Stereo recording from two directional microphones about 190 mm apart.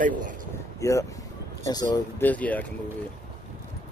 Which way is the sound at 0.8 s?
15° left (ahead or behind).